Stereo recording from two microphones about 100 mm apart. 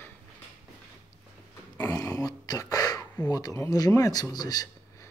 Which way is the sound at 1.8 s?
35° left (ahead or behind).